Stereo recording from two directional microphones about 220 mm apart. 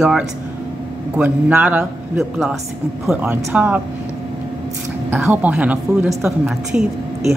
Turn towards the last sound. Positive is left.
turn(degrees=0)  # may be behind; listen again after turning